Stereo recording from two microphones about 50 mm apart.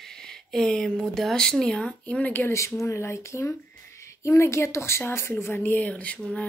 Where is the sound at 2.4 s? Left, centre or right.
Left.